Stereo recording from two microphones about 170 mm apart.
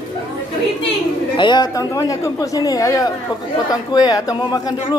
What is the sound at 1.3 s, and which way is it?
Speech, 25° left (ahead or behind).